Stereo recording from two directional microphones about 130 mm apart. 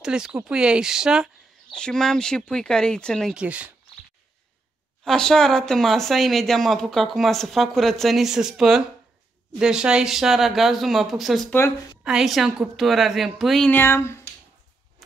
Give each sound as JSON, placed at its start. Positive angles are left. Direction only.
{"t": 0.0, "sound": "speech", "side_deg": -5}
{"t": 1.7, "sound": "speech", "side_deg": 5}
{"t": 3.3, "sound": "speech", "side_deg": -10}
{"t": 5.0, "sound": "speech", "side_deg": 5}
{"t": 13.7, "sound": "speech", "side_deg": 15}